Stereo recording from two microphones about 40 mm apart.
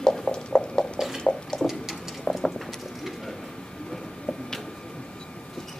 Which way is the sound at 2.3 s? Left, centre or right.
Centre.